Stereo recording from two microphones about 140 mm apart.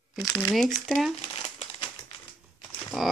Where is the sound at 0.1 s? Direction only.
Centre (ahead or behind).